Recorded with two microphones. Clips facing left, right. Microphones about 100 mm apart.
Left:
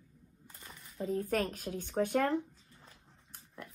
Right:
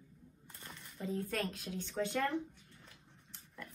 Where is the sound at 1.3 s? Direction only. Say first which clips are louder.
Left 6 dB; 50° left (ahead or behind).